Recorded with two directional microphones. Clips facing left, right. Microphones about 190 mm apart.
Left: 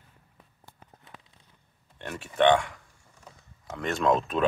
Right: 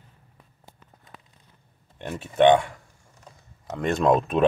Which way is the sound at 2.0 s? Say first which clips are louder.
Right 5 dB; 15° right (ahead or behind).